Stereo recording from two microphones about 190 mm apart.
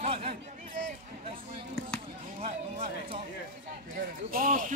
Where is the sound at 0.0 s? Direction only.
30° right (ahead or behind).